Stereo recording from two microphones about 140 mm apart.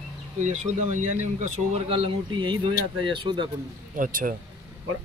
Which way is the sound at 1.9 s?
40° right (ahead or behind).